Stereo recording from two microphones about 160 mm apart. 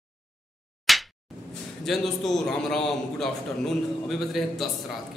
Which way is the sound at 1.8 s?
Centre (ahead or behind).